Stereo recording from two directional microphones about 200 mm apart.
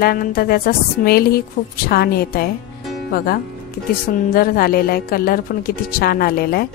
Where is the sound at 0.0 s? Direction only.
45° left (ahead or behind).